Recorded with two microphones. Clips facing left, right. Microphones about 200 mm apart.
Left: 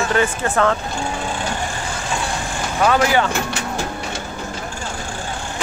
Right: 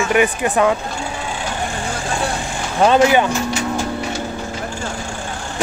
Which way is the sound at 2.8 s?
20° right (ahead or behind).